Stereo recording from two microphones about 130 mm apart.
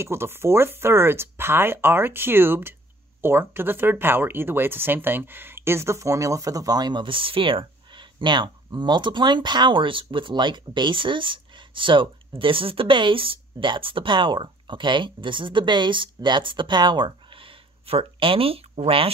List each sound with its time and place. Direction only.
0.0 s speech: 20° right (ahead or behind); by 19.0 s 45° right (ahead or behind)